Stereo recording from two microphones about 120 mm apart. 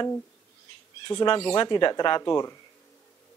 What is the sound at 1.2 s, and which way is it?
Speech, 45° left (ahead or behind).